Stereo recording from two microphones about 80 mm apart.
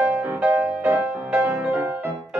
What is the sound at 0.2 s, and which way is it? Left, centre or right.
Music, right.